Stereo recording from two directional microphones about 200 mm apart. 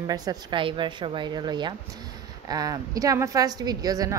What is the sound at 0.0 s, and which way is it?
A woman's voice, 20° right (ahead or behind).